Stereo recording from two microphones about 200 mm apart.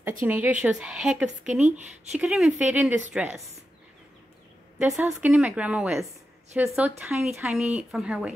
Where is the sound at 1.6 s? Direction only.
35° right (ahead or behind).